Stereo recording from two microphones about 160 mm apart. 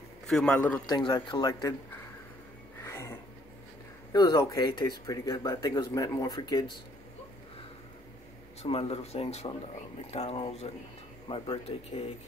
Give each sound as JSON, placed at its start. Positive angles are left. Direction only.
{"t": 0.3, "sound": "a man's voice", "side_deg": 5}
{"t": 0.8, "sound": "speech", "side_deg": 25}
{"t": 2.8, "sound": "a sound", "side_deg": 15}
{"t": 4.1, "sound": "speech", "side_deg": 25}
{"t": 8.6, "sound": "speech", "side_deg": 40}